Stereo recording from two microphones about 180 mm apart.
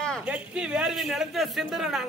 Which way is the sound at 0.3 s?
5° right (ahead or behind).